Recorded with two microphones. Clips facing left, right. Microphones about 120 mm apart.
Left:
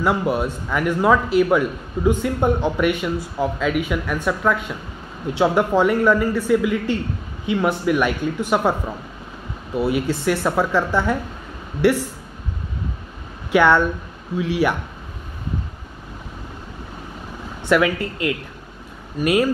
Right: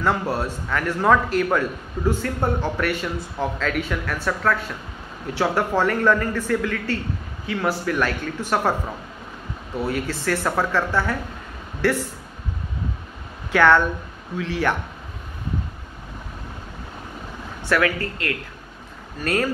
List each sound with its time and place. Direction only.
0.0 s a man's voice: 15° left (ahead or behind)
9.8 s a man's voice: 15° left (ahead or behind)
13.5 s a man's voice: 15° left (ahead or behind)
17.6 s a man's voice: 15° left (ahead or behind)